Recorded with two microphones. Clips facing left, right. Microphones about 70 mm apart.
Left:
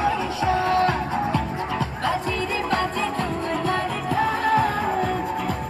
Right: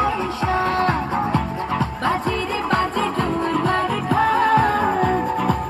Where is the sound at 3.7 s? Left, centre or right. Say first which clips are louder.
Right 4 dB; right.